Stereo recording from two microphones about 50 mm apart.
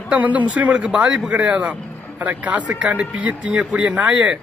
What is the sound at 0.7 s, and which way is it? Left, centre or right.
Speech, right.